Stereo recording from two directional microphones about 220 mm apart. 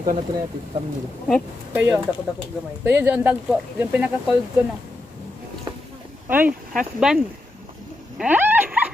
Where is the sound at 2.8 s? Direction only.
10° right (ahead or behind).